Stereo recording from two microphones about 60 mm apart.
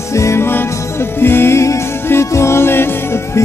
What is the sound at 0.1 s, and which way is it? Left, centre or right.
Music, left.